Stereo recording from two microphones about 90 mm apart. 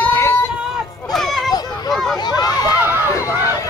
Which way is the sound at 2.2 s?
50° left (ahead or behind).